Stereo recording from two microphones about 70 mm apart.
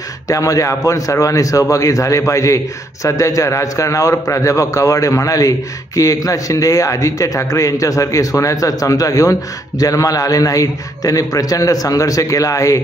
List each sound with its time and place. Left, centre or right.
0.3 s a man's voice: left